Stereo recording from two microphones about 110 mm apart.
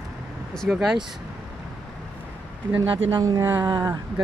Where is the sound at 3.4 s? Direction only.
20° right (ahead or behind).